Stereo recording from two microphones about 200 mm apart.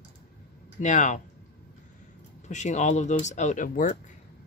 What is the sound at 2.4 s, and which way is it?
Speech, 35° left (ahead or behind).